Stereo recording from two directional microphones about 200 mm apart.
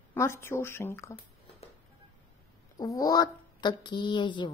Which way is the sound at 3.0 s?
20° left (ahead or behind).